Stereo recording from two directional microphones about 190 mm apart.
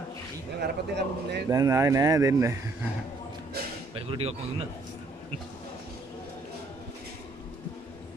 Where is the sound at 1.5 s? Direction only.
15° right (ahead or behind).